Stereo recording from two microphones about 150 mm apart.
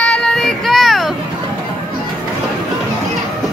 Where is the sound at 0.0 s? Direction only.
5° left (ahead or behind).